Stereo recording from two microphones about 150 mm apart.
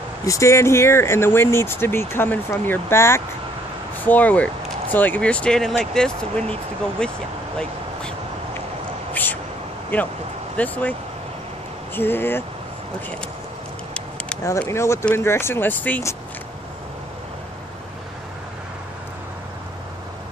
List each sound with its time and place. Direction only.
0.2 s speech: 20° left (ahead or behind)
9.1 s a sound: 10° left (ahead or behind)
9.9 s speech: 10° left (ahead or behind)
14.6 s speech: 20° left (ahead or behind)